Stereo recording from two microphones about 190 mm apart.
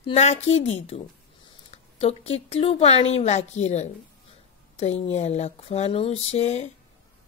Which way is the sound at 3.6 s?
35° left (ahead or behind).